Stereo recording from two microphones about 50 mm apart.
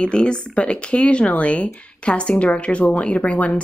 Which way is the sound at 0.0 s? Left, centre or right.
Centre.